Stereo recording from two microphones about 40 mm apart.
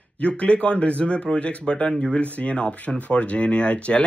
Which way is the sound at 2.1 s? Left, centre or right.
Left.